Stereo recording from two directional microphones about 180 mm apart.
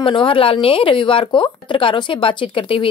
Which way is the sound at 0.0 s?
30° left (ahead or behind).